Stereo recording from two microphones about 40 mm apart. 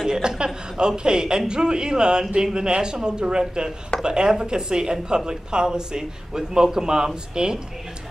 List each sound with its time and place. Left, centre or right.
0.0 s speech: centre